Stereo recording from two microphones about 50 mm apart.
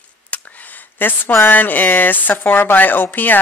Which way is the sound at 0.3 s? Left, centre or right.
Left.